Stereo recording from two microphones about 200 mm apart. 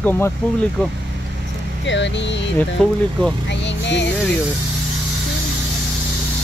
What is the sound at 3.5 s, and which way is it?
Speech, 65° left (ahead or behind).